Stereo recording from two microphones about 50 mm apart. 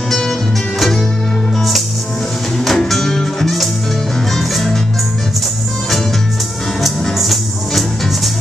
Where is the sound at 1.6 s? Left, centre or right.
Centre.